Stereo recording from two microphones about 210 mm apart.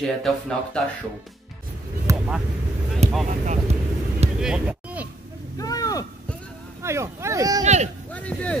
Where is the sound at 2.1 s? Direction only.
15° right (ahead or behind).